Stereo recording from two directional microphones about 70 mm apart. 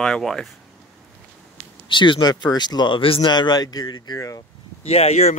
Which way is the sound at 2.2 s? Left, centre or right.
Left.